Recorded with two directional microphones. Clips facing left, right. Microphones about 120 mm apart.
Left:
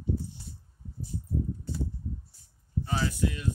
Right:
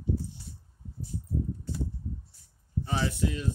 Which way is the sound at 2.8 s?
25° right (ahead or behind).